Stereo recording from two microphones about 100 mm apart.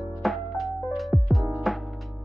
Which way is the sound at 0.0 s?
Centre (ahead or behind).